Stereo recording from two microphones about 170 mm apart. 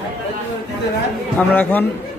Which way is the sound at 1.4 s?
10° left (ahead or behind).